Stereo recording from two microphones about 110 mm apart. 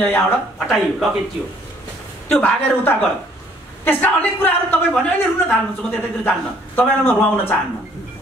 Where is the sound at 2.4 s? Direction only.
20° left (ahead or behind).